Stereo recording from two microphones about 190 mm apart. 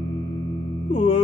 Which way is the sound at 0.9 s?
25° left (ahead or behind).